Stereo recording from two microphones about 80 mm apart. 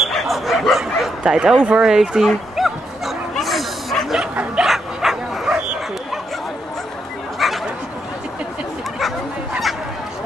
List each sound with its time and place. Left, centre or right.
0.0 s bow-wow: centre
4.2 s bow-wow: centre
7.3 s bow-wow: centre